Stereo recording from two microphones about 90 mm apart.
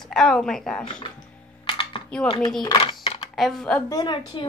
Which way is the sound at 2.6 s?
65° left (ahead or behind).